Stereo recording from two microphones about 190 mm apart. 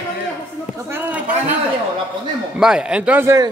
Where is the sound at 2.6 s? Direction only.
5° right (ahead or behind).